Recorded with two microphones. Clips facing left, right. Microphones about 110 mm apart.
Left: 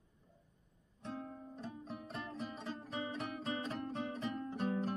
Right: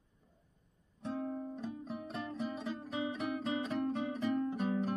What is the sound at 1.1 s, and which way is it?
Music, centre (ahead or behind).